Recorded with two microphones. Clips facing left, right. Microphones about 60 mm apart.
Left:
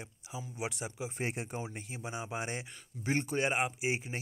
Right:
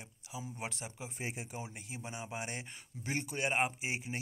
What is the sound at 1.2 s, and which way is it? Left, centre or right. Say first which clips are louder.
Speech: left 5 dB; left.